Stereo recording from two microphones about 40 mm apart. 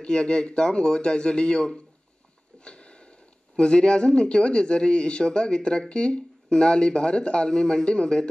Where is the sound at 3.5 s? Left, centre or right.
Left.